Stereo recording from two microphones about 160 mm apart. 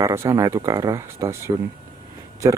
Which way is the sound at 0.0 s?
15° right (ahead or behind).